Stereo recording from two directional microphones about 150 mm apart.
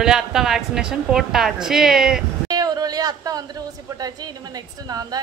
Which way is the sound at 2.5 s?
25° right (ahead or behind).